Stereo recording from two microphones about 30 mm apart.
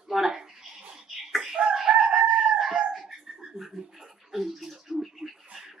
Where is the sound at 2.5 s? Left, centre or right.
Centre.